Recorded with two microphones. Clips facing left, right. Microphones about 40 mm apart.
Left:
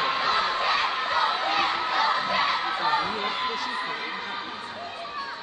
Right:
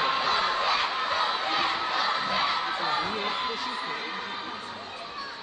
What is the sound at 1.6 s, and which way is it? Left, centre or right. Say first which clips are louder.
Crowd: left 3 dB; centre.